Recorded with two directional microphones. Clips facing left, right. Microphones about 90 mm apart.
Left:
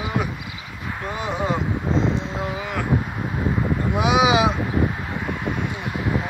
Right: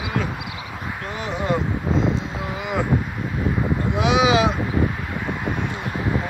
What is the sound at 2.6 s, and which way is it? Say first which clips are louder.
Wind: right 3 dB; 20° right (ahead or behind).